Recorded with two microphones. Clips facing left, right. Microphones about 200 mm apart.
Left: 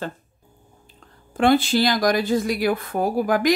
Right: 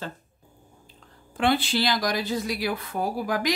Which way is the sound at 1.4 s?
45° left (ahead or behind).